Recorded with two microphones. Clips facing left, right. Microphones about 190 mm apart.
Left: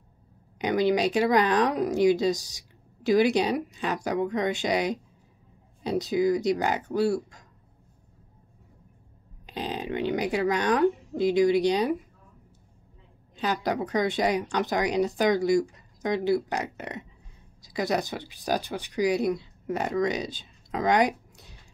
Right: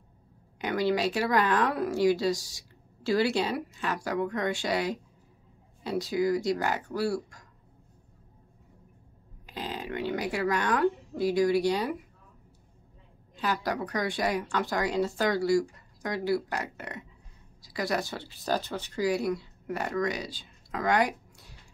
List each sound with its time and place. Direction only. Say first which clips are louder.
0.6 s speech: left 4 dB; 20° left (ahead or behind)
9.5 s speech: left 4 dB; 20° left (ahead or behind)
13.4 s speech: left 3 dB; 20° left (ahead or behind)